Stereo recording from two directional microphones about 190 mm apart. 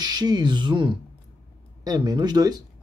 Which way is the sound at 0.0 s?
20° right (ahead or behind).